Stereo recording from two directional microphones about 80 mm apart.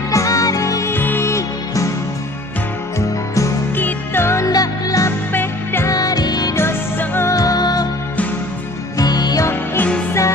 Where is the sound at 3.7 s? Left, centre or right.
Left.